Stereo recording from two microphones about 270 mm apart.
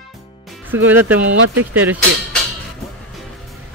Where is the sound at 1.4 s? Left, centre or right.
Right.